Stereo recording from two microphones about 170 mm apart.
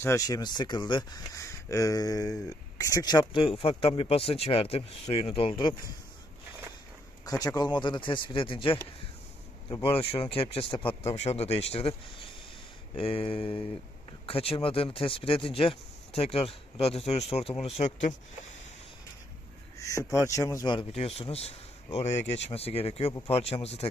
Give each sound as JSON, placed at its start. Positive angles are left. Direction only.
{"t": 0.0, "sound": "speech", "side_deg": 20}
{"t": 7.2, "sound": "speech", "side_deg": 20}
{"t": 9.9, "sound": "speech", "side_deg": 35}
{"t": 19.8, "sound": "speech", "side_deg": 20}